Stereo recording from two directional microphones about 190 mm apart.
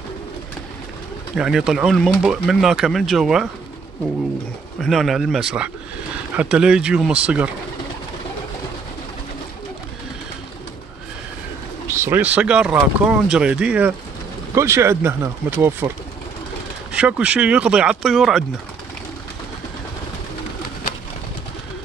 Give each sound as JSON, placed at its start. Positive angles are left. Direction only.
{"t": 1.3, "sound": "speech", "side_deg": -5}
{"t": 4.7, "sound": "speech", "side_deg": 0}
{"t": 11.9, "sound": "speech", "side_deg": -10}
{"t": 16.9, "sound": "speech", "side_deg": -5}